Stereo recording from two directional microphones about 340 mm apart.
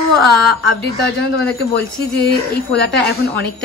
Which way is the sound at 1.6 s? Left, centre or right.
Left.